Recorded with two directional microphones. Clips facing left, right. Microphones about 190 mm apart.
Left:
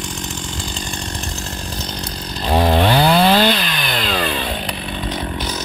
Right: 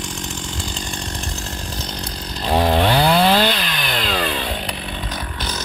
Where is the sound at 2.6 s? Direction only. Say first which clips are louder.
Left 1 dB; 25° left (ahead or behind).